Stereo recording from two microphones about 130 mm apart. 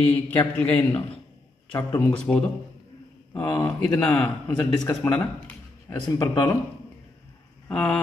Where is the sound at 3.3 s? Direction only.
15° left (ahead or behind).